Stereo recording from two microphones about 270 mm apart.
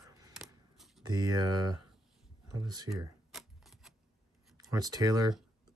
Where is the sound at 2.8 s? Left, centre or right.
Centre.